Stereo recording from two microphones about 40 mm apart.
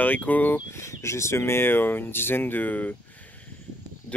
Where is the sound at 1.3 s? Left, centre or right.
Left.